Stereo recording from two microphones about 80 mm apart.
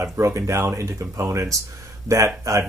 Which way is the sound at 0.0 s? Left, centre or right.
Right.